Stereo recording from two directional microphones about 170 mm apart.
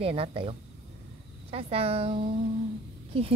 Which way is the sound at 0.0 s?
35° right (ahead or behind).